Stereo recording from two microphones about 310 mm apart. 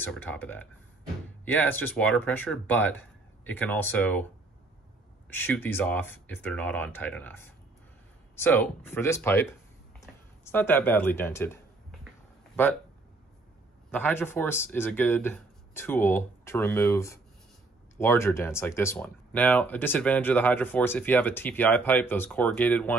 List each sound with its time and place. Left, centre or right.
0.0 s speech: centre
5.3 s speech: centre
13.8 s speech: centre